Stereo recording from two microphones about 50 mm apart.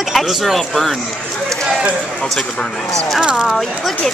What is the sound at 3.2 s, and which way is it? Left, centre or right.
Speech, centre.